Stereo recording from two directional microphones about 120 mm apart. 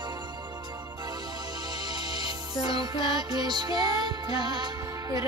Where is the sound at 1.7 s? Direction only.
35° right (ahead or behind).